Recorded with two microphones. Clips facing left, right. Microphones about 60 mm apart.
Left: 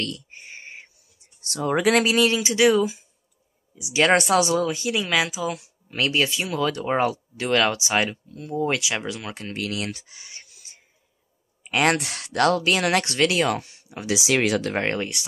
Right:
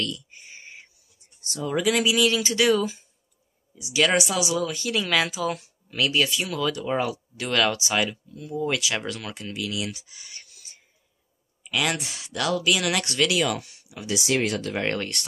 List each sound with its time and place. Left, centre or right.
0.0 s a sound: left
1.2 s speech: left
2.2 s speech: left
4.1 s speech: left
4.6 s speech: left
4.9 s speech: centre
5.9 s speech: left
8.6 s speech: left
9.3 s speech: left
11.6 s speech: left
14.0 s speech: left